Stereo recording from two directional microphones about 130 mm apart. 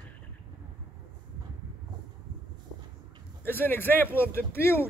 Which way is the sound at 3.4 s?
15° left (ahead or behind).